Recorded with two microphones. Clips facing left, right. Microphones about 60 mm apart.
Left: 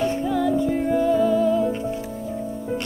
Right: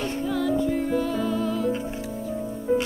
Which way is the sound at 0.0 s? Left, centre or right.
Centre.